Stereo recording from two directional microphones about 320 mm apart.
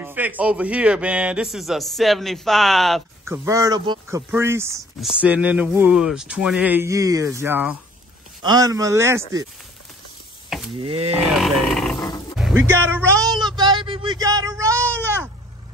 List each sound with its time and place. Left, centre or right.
0.0 s a man's voice: centre
3.4 s speech: centre
10.8 s speech: centre
11.4 s grunt: centre
12.4 s a sound: centre